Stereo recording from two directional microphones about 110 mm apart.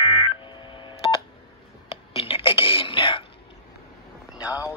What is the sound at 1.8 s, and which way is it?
Throat clearing, 55° left (ahead or behind).